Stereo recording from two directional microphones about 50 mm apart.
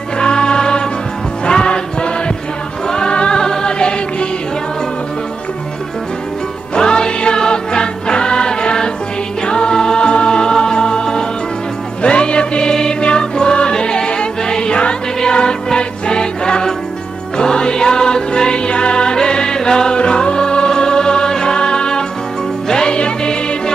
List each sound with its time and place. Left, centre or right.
0.2 s music: centre
6.7 s music: centre